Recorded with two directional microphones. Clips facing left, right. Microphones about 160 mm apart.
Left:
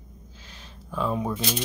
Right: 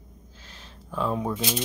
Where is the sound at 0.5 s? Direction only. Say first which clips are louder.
Even; 5° left (ahead or behind).